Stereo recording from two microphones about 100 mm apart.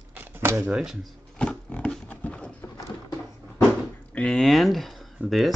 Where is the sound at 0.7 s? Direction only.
5° right (ahead or behind).